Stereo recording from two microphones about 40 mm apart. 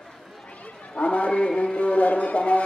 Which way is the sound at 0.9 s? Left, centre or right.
Left.